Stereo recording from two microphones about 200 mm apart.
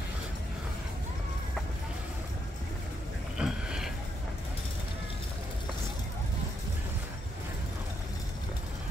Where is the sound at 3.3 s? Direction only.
5° right (ahead or behind).